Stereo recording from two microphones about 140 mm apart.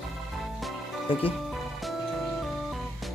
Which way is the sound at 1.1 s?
40° left (ahead or behind).